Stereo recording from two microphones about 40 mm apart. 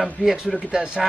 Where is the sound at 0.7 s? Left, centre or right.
Right.